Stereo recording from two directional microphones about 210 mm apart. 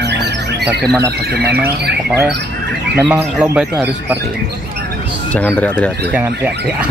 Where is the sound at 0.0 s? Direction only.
50° right (ahead or behind).